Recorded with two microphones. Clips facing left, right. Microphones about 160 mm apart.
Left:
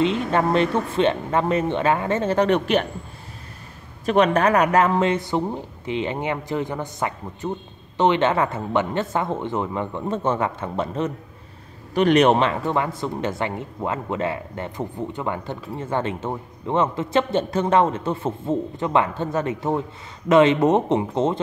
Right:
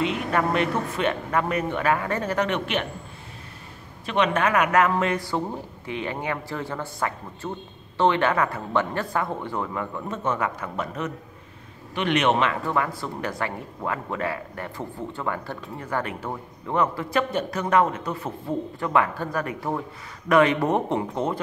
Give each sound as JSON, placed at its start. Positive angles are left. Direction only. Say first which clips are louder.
{"t": 0.0, "sound": "speech", "louder": "left 4 dB", "side_deg": 30}
{"t": 4.0, "sound": "speech", "louder": "left 5 dB", "side_deg": 40}
{"t": 11.9, "sound": "speech", "louder": "left 6 dB", "side_deg": 40}